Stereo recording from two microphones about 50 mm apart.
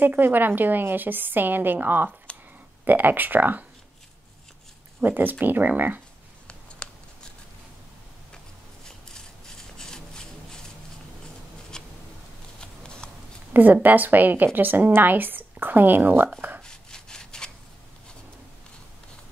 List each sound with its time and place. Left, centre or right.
0.0 s speech: right
2.3 s a sound: left
2.8 s speech: right
5.0 s speech: right
6.8 s scissors: centre
8.8 s rub: centre
11.7 s a sound: centre
12.5 s shuffling cards: centre
13.5 s a sound: right
13.8 s speech: right
16.3 s shuffling cards: right
16.6 s sawing: centre